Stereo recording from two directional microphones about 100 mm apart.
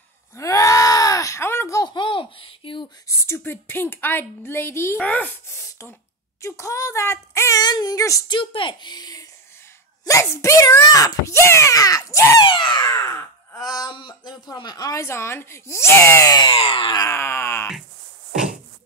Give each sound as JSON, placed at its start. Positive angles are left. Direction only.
{"t": 0.4, "sound": "groan", "side_deg": 30}
{"t": 2.0, "sound": "a sound", "side_deg": 60}
{"t": 3.1, "sound": "speech", "side_deg": 25}
{"t": 5.0, "sound": "speech", "side_deg": 15}
{"t": 5.5, "sound": "beatboxing", "side_deg": 30}
{"t": 6.4, "sound": "a child's voice", "side_deg": 30}
{"t": 8.3, "sound": "speech", "side_deg": 55}
{"t": 10.0, "sound": "a child's voice", "side_deg": 30}
{"t": 12.4, "sound": "speech", "side_deg": 50}
{"t": 12.8, "sound": "a child's voice", "side_deg": 30}
{"t": 13.9, "sound": "a child's voice", "side_deg": 50}
{"t": 16.3, "sound": "speech", "side_deg": 45}
{"t": 16.5, "sound": "a sound", "side_deg": 60}
{"t": 16.9, "sound": "speech", "side_deg": 30}